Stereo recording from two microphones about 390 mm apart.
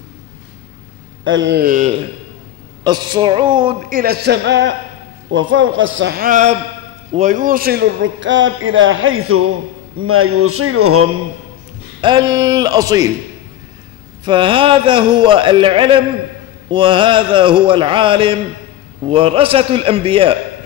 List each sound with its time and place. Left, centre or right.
1.2 s a man's voice: right
12.0 s a man's voice: centre
14.2 s a man's voice: centre